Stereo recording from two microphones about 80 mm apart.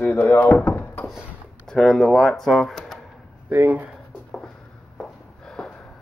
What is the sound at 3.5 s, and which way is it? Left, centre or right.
Speech, right.